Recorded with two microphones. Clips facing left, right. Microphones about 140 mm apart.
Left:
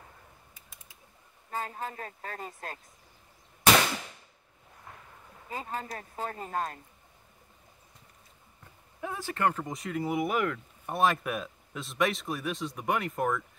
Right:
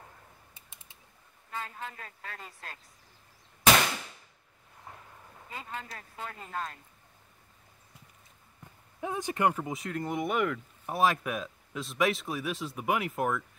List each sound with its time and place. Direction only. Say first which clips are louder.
0.6 s bird: left 1 dB; 25° right (ahead or behind)
1.5 s speech: left 4 dB; 40° left (ahead or behind)
5.5 s speech: left 5 dB; 40° left (ahead or behind)
9.0 s speech: right 1 dB; 20° right (ahead or behind)